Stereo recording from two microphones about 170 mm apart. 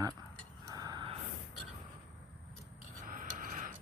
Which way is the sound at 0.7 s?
20° right (ahead or behind).